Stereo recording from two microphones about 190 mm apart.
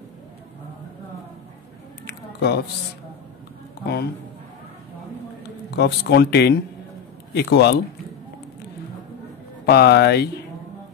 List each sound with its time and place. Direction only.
2.0 s a sound: 60° left (ahead or behind)
3.8 s speech: 60° left (ahead or behind)
5.4 s speech: 60° left (ahead or behind)
9.7 s speech: 60° left (ahead or behind)